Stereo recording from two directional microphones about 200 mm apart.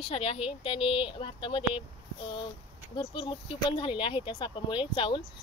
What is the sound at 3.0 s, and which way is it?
Speech, 25° left (ahead or behind).